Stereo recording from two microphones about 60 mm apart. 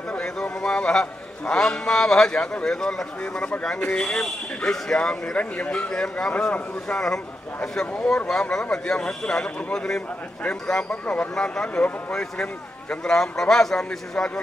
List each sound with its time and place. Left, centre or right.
0.1 s a man's voice: centre